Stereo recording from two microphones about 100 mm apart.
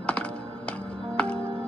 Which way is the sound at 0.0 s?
10° left (ahead or behind).